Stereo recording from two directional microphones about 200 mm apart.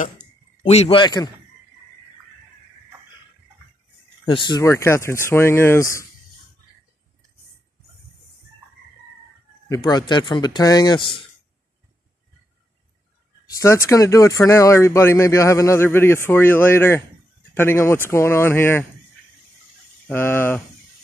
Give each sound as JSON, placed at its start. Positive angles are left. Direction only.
{"t": 0.7, "sound": "speech", "side_deg": 30}
{"t": 4.3, "sound": "a man's voice", "side_deg": 25}
{"t": 9.7, "sound": "speech", "side_deg": 20}
{"t": 13.6, "sound": "a man's voice", "side_deg": 15}
{"t": 20.1, "sound": "a man's voice", "side_deg": 10}